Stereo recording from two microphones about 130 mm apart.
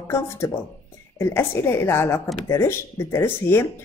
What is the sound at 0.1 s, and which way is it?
Speech, 20° left (ahead or behind).